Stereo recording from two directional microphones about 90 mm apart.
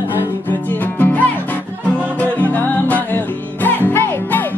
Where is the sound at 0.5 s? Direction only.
20° left (ahead or behind).